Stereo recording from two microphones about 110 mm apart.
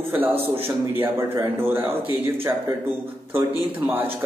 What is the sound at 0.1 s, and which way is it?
A man's voice, 20° right (ahead or behind).